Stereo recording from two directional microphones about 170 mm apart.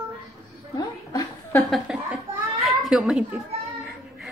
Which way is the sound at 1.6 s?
Centre (ahead or behind).